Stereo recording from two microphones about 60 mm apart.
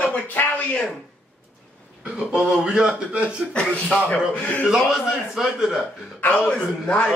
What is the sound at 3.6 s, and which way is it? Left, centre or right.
Speech, left.